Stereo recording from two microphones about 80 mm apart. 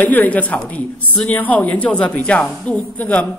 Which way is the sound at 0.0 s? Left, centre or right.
Left.